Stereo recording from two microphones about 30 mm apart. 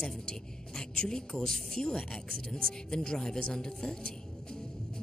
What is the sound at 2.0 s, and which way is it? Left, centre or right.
Speech, left.